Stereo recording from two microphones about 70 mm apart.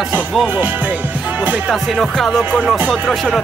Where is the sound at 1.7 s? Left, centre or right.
Centre.